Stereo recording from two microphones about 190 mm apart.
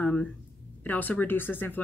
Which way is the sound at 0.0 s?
5° left (ahead or behind).